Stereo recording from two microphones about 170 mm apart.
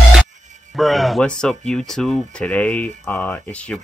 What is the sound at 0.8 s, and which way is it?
Speech, centre (ahead or behind).